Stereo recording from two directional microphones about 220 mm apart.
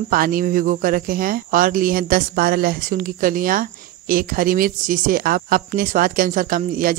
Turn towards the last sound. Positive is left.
turn(degrees=-40)  # may be behind; listen again after turning